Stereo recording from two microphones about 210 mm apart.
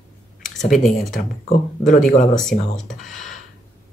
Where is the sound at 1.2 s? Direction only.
45° left (ahead or behind).